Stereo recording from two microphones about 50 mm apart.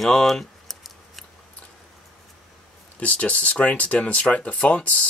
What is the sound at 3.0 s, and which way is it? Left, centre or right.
Speech, left.